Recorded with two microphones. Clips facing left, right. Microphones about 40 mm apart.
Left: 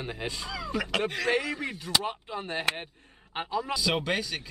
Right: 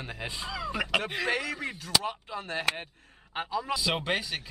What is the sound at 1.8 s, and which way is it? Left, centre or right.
Speech, centre.